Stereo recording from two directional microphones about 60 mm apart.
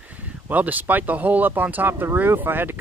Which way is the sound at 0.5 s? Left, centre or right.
Right.